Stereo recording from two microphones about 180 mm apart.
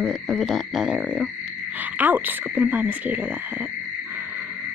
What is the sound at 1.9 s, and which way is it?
Speech, 10° right (ahead or behind).